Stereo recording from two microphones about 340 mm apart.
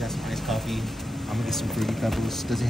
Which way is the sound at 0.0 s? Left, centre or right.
Centre.